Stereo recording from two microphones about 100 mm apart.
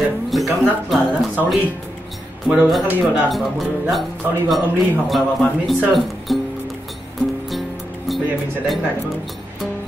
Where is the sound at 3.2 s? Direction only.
Centre (ahead or behind).